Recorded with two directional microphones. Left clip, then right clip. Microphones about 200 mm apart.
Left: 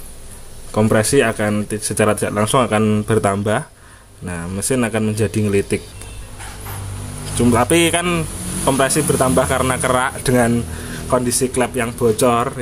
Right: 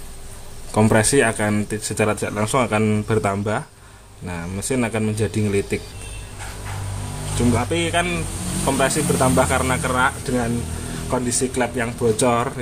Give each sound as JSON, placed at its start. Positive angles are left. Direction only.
{"t": 0.7, "sound": "speech", "side_deg": 0}
{"t": 7.3, "sound": "speech", "side_deg": 30}